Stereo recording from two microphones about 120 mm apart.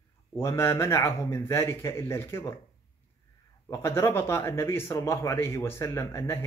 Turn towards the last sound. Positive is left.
turn(degrees=25)  # may be behind; listen again after turning